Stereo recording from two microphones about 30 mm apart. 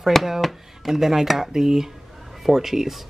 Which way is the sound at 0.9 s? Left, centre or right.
Centre.